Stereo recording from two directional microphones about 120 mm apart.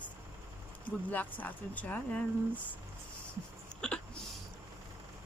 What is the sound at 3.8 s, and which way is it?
Hiccup, 5° left (ahead or behind).